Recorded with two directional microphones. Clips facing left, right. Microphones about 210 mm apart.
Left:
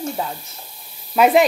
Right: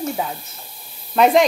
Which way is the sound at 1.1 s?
5° left (ahead or behind).